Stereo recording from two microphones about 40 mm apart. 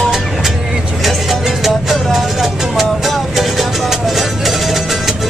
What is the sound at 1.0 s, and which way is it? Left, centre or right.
Music, centre.